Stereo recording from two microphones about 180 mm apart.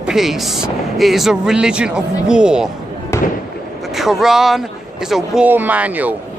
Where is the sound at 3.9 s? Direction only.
Centre (ahead or behind).